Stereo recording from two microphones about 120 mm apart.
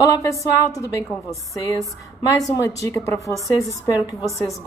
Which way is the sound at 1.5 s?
25° left (ahead or behind).